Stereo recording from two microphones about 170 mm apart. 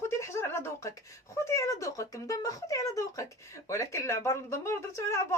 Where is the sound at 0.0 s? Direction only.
15° left (ahead or behind).